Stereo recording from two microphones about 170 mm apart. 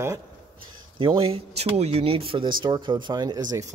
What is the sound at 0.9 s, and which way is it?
Speech, 30° right (ahead or behind).